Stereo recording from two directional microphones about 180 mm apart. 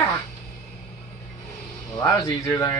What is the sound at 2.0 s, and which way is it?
Speech, 20° left (ahead or behind).